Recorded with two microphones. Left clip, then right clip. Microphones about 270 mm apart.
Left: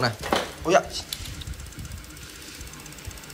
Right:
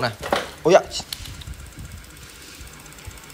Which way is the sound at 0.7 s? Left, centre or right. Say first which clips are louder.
Right 6 dB; right.